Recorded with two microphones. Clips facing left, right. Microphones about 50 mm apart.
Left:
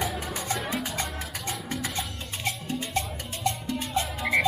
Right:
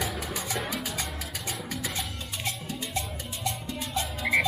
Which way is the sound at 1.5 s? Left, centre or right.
Left.